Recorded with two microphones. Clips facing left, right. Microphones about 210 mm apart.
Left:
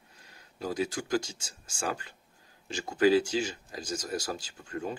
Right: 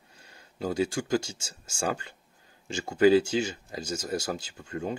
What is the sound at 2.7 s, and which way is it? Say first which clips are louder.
Speech: right 3 dB; 25° right (ahead or behind).